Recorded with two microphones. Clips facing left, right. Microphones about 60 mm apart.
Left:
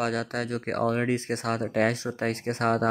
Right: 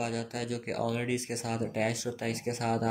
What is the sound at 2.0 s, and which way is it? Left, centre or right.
Speech, left.